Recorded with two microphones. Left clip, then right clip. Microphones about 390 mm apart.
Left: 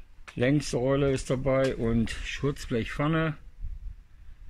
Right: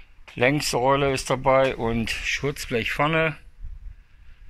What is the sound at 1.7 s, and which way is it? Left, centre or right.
Speech, right.